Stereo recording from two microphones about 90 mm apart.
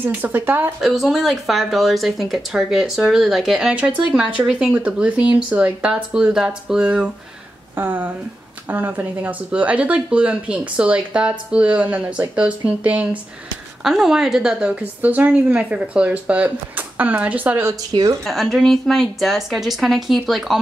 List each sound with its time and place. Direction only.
0.0 s speech: 20° right (ahead or behind)
0.7 s speech: centre (ahead or behind)
3.7 s speech: 15° right (ahead or behind)
7.7 s speech: 25° right (ahead or behind)
18.2 s speech: centre (ahead or behind)